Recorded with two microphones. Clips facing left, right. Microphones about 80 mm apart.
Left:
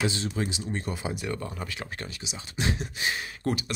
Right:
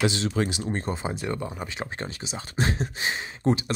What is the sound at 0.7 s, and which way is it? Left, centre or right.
Speech, right.